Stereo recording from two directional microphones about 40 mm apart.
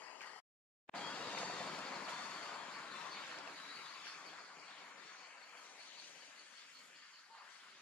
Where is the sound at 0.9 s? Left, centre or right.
Left.